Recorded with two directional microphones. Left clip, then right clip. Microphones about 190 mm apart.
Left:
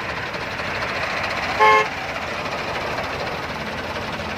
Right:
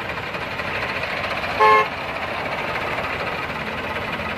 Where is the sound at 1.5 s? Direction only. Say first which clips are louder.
Even; 50° left (ahead or behind).